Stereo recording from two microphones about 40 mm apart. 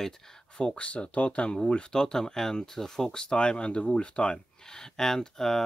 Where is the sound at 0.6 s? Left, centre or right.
Left.